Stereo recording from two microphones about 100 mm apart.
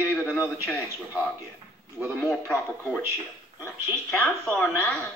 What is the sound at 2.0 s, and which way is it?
Speech, 5° left (ahead or behind).